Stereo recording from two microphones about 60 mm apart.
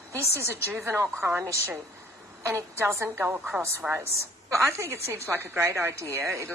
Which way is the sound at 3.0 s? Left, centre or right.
Right.